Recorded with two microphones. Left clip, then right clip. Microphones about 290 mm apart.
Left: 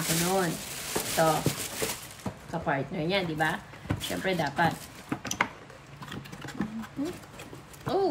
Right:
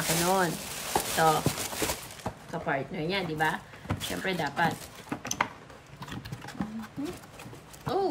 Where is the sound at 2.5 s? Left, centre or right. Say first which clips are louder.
Left 1 dB; centre.